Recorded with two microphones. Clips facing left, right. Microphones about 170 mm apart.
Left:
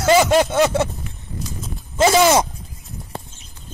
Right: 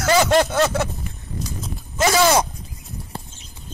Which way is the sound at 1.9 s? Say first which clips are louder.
Left 3 dB; 25° left (ahead or behind).